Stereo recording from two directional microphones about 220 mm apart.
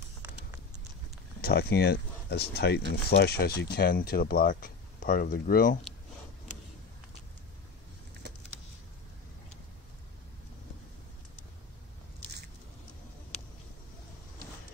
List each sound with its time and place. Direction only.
1.4 s speech: 45° left (ahead or behind)